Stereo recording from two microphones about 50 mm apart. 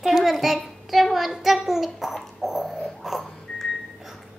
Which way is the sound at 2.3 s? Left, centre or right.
Centre.